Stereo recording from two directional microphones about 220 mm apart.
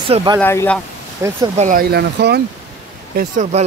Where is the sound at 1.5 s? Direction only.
40° right (ahead or behind).